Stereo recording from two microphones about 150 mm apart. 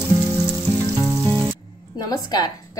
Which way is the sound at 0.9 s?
20° right (ahead or behind).